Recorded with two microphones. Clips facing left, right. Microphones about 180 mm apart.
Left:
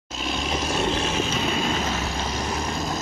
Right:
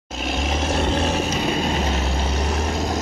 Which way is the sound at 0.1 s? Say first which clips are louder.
Right 3 dB; 60° right (ahead or behind).